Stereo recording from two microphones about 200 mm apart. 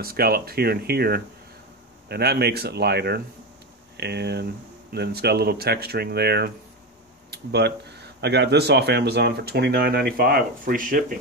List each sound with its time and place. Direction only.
0.0 s speech: 50° right (ahead or behind)